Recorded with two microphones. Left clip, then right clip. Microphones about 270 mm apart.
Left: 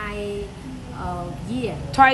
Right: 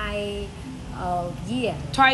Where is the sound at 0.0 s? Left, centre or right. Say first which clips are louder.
Right 1 dB; centre.